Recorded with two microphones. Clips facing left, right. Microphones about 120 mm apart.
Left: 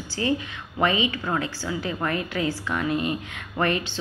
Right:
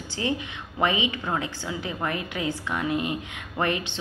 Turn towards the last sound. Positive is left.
turn(degrees=-15)  # may be behind; listen again after turning